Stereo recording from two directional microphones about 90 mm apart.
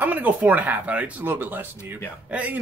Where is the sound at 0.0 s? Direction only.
20° right (ahead or behind).